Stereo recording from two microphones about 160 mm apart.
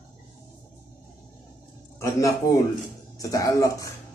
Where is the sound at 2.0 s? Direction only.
20° left (ahead or behind).